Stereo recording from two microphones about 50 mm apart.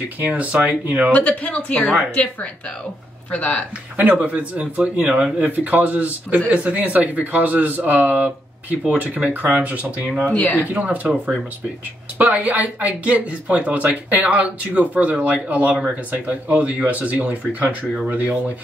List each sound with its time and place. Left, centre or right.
0.2 s speech: right
1.1 s speech: left
3.3 s speech: left
4.1 s speech: right
10.2 s speech: left
10.7 s speech: right